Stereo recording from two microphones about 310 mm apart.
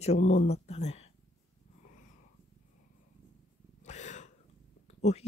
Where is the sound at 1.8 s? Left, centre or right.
Left.